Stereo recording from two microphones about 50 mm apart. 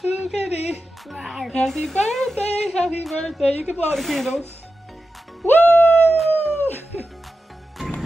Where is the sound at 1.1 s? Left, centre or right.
Centre.